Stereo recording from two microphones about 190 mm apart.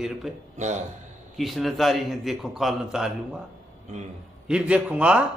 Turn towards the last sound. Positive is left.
turn(degrees=-5)  # may be behind; listen again after turning